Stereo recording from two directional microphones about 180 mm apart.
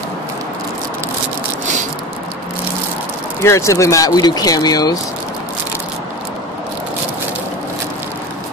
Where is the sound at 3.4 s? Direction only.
15° left (ahead or behind).